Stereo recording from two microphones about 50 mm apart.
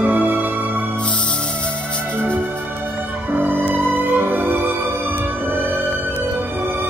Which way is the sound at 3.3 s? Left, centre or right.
Right.